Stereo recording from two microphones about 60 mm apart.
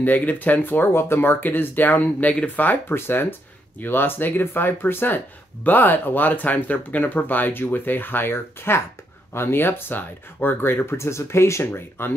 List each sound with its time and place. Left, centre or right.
0.0 s speech: left